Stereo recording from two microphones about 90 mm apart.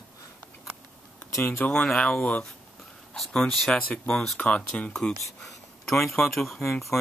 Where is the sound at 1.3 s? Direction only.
25° left (ahead or behind).